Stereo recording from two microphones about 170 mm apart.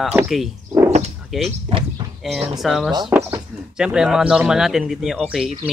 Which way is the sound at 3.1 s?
15° right (ahead or behind).